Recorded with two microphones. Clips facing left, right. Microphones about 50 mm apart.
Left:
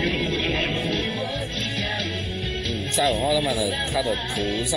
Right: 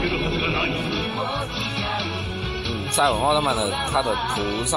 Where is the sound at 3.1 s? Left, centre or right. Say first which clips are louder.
Right 2 dB; right.